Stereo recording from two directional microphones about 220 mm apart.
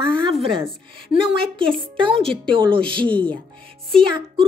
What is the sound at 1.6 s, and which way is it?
Speech, 25° right (ahead or behind).